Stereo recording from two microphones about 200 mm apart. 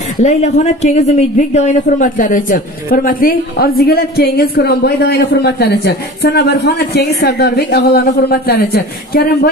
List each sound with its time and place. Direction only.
0.2 s a man's voice: 35° left (ahead or behind); by 9.5 s 50° left (ahead or behind)